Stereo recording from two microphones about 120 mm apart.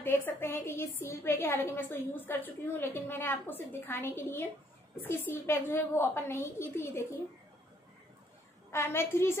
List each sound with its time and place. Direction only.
0.0 s a woman's voice: 20° left (ahead or behind)
8.7 s a woman's voice: 20° left (ahead or behind)